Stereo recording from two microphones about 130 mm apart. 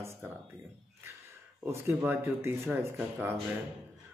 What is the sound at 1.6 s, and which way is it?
A man's voice, 20° right (ahead or behind).